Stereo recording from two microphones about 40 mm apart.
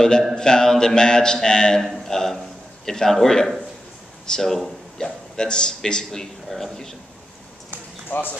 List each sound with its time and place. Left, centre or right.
0.4 s a man's voice: centre
6.5 s a man's voice: centre
8.1 s speech: left